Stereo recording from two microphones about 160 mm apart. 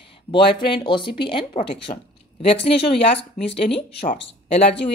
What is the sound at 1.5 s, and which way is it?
Speech, 45° left (ahead or behind).